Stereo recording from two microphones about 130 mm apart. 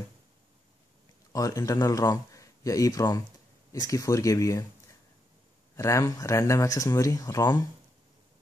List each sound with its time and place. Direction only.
1.3 s a man's voice: 25° left (ahead or behind)
5.8 s speech: 25° left (ahead or behind)